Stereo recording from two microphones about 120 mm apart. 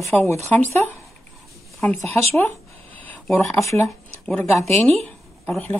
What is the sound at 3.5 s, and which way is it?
Speech, 25° left (ahead or behind).